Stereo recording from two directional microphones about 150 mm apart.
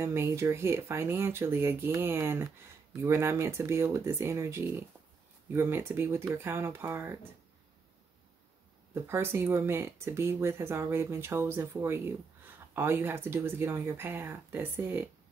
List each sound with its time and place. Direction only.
0.0 s speech: 15° right (ahead or behind)
8.9 s speech: 15° right (ahead or behind)